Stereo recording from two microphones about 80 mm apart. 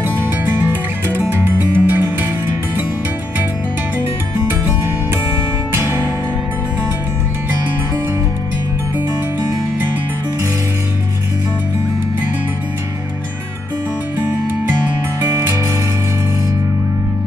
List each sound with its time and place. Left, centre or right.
0.7 s music: right